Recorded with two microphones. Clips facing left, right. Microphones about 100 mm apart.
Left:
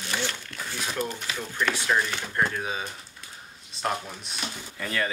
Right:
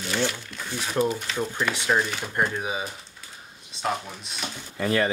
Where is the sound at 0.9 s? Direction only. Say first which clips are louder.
Right 10 dB; 5° right (ahead or behind).